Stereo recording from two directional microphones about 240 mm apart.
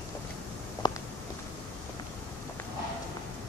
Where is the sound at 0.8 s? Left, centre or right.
Centre.